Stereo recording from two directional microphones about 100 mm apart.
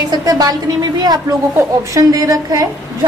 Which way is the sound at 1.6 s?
35° right (ahead or behind).